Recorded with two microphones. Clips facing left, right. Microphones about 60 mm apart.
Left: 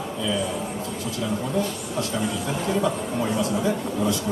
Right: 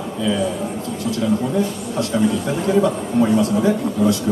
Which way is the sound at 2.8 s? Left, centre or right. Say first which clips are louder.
Right 7 dB; centre.